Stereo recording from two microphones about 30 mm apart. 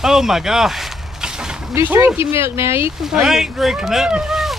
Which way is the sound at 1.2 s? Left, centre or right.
Right.